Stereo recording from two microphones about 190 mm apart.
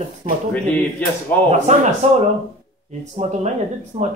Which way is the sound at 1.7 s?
40° right (ahead or behind).